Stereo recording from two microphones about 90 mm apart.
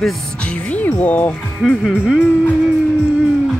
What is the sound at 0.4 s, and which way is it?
Speech, 15° left (ahead or behind).